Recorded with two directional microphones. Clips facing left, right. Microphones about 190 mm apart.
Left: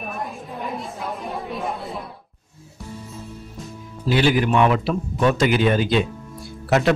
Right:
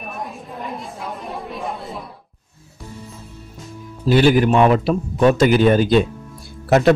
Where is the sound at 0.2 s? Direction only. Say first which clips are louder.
Even; centre (ahead or behind).